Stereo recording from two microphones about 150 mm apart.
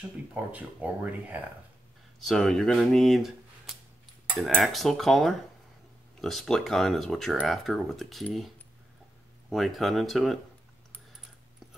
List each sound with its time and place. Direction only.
0.3 s speech: 10° right (ahead or behind)
2.1 s speech: centre (ahead or behind)
4.4 s speech: centre (ahead or behind)
9.5 s speech: centre (ahead or behind)